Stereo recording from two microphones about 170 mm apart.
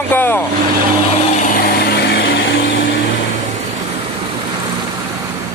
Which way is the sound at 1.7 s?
70° left (ahead or behind).